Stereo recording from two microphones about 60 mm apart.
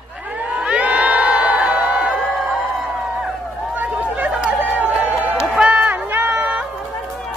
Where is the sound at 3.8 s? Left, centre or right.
Right.